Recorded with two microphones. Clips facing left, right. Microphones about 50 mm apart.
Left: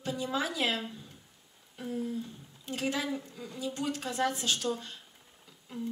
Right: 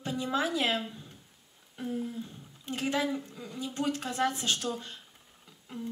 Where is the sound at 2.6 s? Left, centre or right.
Right.